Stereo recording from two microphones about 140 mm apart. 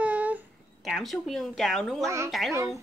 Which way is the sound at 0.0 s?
10° right (ahead or behind).